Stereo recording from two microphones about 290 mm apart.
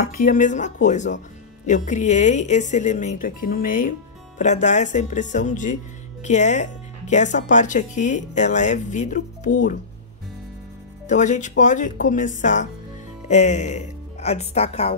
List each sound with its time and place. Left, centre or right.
0.0 s speech: left
11.1 s speech: left